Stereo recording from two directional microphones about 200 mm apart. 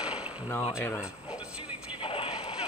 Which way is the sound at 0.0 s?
5° right (ahead or behind).